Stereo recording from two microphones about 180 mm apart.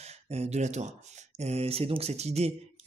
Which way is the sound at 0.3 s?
35° right (ahead or behind).